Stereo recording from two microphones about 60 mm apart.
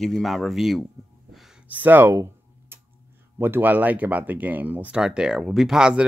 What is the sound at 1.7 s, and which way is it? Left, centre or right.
Speech, right.